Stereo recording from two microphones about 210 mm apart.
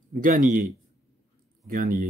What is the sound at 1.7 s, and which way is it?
Speech, 45° right (ahead or behind).